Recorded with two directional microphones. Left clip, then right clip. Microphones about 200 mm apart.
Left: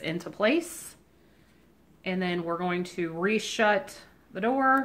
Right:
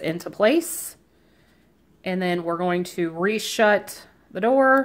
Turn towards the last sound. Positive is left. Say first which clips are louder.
# right 7 dB
turn(degrees=-50)  # may be behind; listen again after turning